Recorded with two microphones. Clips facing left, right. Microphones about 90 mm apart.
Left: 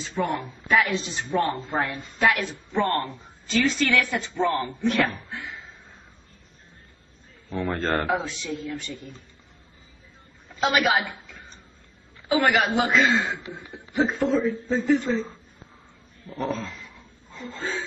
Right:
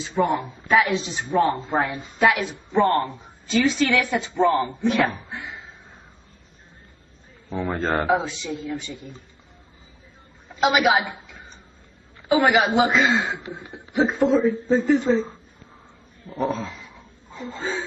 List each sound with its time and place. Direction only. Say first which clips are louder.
0.0 s a man's voice: right 5 dB; 5° right (ahead or behind)
1.3 s a man's voice: right 4 dB; 20° right (ahead or behind)
2.0 s a woman's voice: right 2 dB; 5° right (ahead or behind)
4.8 s a sound: left 1 dB; 5° right (ahead or behind)
7.7 s a woman's voice: right 4 dB; 5° right (ahead or behind)
10.5 s a woman's voice: right 3 dB; 10° right (ahead or behind)
13.9 s a woman's voice: right 3 dB; 5° right (ahead or behind)
14.7 s a woman's voice: right 3 dB; centre (ahead or behind)
16.3 s a sound: right 4 dB; 5° right (ahead or behind)
17.4 s a man's voice: right 3 dB; 15° right (ahead or behind)